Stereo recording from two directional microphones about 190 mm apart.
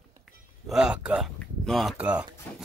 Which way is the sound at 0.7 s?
5° right (ahead or behind).